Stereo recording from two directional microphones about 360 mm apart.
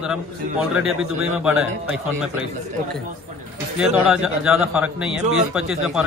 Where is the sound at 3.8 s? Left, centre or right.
Centre.